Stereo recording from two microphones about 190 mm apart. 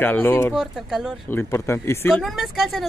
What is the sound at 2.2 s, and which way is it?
Speech, centre (ahead or behind).